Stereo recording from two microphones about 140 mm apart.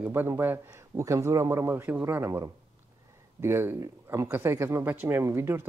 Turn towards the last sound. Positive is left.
turn(degrees=-15)  # may be behind; listen again after turning